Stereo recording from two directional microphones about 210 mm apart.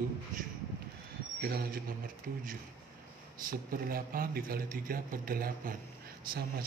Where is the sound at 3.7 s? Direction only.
45° right (ahead or behind).